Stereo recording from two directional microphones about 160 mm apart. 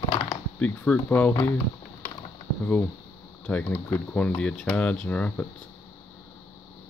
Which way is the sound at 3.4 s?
10° left (ahead or behind).